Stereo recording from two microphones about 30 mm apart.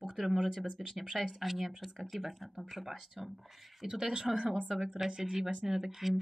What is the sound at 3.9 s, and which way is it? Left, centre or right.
Speech, right.